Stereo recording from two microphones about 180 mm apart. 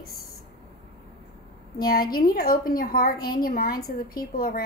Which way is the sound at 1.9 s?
55° left (ahead or behind).